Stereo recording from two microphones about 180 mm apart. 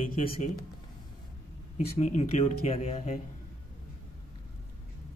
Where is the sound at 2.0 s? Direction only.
40° left (ahead or behind).